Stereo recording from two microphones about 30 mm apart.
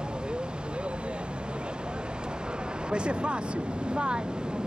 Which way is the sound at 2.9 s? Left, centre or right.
Right.